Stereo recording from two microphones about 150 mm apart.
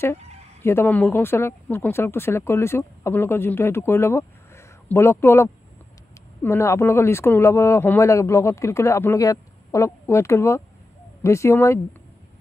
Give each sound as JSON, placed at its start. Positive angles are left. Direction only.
{"t": 0.6, "sound": "speech", "side_deg": 15}